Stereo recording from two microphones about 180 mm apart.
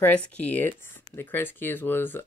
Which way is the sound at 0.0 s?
5° left (ahead or behind).